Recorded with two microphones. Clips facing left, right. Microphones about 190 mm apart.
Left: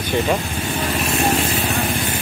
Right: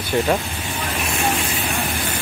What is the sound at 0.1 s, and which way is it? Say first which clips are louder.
Speech: even; centre (ahead or behind).